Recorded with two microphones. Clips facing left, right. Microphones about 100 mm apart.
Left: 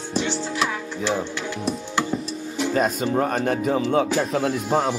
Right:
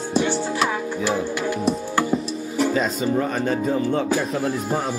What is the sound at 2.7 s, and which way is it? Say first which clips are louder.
Speech: even; 55° left (ahead or behind).